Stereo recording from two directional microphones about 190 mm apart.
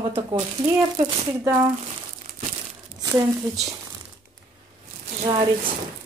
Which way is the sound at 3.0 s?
20° right (ahead or behind).